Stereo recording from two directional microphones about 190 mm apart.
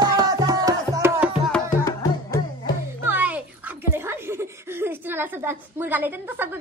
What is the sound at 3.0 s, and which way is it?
Music, 10° right (ahead or behind).